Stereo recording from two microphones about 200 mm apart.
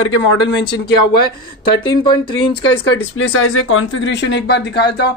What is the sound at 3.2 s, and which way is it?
Speech, 75° left (ahead or behind).